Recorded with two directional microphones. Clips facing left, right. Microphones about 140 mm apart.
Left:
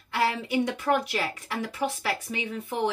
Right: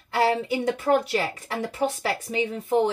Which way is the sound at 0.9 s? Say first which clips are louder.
Right 4 dB; 30° right (ahead or behind).